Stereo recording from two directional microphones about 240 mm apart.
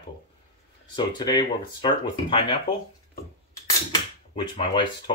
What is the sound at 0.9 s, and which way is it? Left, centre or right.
Speech, centre.